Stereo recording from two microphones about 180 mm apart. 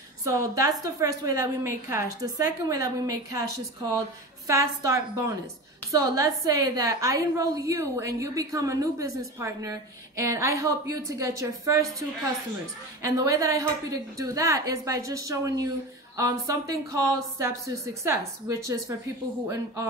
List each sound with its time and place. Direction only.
0.2 s a woman's voice: 20° right (ahead or behind)
4.5 s a woman's voice: 15° right (ahead or behind)
13.0 s a woman's voice: 20° right (ahead or behind)